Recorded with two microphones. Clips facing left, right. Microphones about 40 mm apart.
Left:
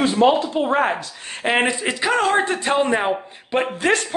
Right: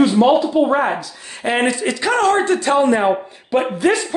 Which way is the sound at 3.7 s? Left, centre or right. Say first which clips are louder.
Right 3 dB; left.